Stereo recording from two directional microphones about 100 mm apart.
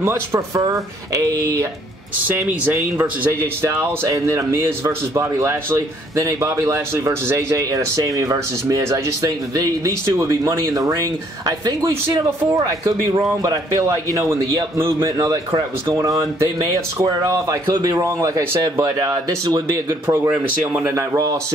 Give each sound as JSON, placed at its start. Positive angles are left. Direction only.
{"t": 0.0, "sound": "a man's voice", "side_deg": -25}
{"t": 2.2, "sound": "speech", "side_deg": -20}
{"t": 3.6, "sound": "a man's voice", "side_deg": -30}
{"t": 13.4, "sound": "a man's voice", "side_deg": -35}
{"t": 15.0, "sound": "a man's voice", "side_deg": -40}
{"t": 18.9, "sound": "a man's voice", "side_deg": -40}
{"t": 19.9, "sound": "speech", "side_deg": -20}
{"t": 20.9, "sound": "a man's voice", "side_deg": -35}